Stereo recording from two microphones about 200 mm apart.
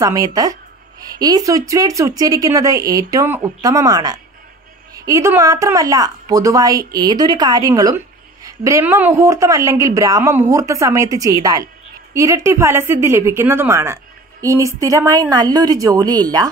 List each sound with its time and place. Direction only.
0.0 s a woman's voice: 15° right (ahead or behind)